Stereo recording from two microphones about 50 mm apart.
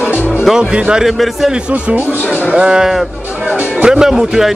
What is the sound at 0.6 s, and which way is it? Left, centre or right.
Speech, centre.